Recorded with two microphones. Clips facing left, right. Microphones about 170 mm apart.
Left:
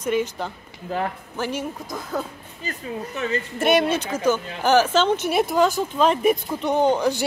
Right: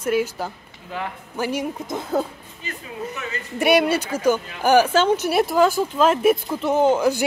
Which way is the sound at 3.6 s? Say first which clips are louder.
Right 2 dB; 10° right (ahead or behind).